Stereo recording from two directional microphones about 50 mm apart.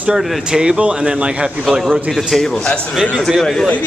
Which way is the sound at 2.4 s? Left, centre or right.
Centre.